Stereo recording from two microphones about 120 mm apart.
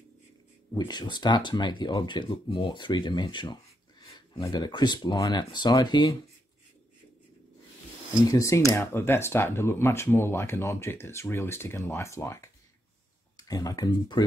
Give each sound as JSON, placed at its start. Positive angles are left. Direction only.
{"t": 0.7, "sound": "speech", "side_deg": 35}
{"t": 8.3, "sound": "speech", "side_deg": 25}